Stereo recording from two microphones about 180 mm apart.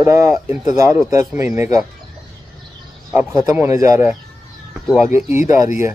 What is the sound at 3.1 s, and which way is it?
Speech, 10° right (ahead or behind).